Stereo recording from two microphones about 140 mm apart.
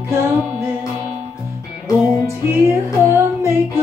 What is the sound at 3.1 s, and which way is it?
Music, 20° right (ahead or behind).